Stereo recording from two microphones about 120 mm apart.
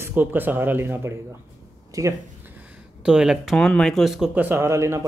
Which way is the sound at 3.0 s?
5° right (ahead or behind).